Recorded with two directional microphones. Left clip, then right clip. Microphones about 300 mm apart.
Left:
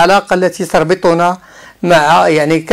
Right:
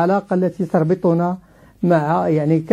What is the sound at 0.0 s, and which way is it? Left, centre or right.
Speech, centre.